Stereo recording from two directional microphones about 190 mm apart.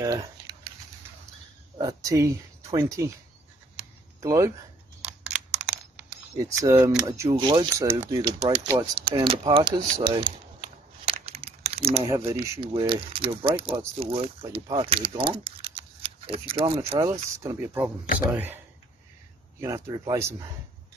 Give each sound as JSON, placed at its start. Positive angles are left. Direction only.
{"t": 0.0, "sound": "a sound", "side_deg": -20}
{"t": 1.8, "sound": "speech", "side_deg": -20}
{"t": 3.7, "sound": "writing", "side_deg": -15}
{"t": 5.0, "sound": "computer keyboard", "side_deg": -5}
{"t": 6.3, "sound": "speech", "side_deg": -15}
{"t": 7.8, "sound": "speech", "side_deg": -15}
{"t": 8.7, "sound": "a sound", "side_deg": -25}
{"t": 12.1, "sound": "speech", "side_deg": -15}
{"t": 12.5, "sound": "speech", "side_deg": -30}
{"t": 17.4, "sound": "speech", "side_deg": -15}
{"t": 19.6, "sound": "speech", "side_deg": -15}